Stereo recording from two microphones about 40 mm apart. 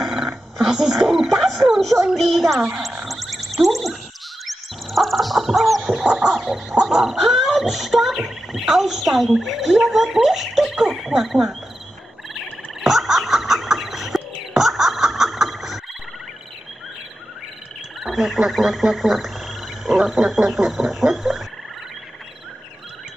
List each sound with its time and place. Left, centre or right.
0.0 s dog: centre
0.3 s speech: centre
3.1 s a sound: centre
6.0 s music: centre
6.3 s frog: centre
8.5 s speech: centre
12.8 s a sound: centre
18.0 s frog: centre